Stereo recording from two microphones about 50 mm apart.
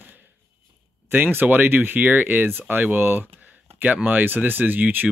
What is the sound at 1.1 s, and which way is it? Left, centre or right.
Speech, right.